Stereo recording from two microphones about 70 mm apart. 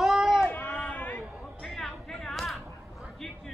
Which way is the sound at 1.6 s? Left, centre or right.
Centre.